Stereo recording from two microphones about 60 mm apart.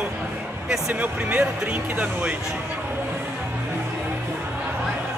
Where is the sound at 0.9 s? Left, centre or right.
Right.